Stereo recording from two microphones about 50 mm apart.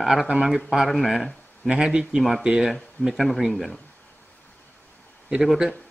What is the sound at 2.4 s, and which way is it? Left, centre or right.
Speech, centre.